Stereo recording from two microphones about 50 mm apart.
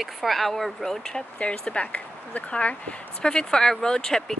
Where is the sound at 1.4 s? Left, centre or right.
Left.